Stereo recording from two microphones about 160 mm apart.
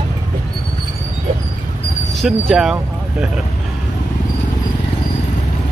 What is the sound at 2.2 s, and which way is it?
Speech, centre (ahead or behind).